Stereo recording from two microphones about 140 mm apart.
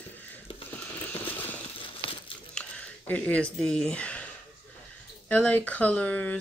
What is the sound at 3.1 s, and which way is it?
Speech, 10° left (ahead or behind).